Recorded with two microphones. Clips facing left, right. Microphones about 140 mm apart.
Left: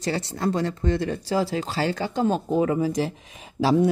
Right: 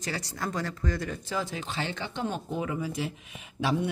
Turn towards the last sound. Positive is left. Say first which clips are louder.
# left 8 dB
turn(degrees=35)  # may be behind; listen again after turning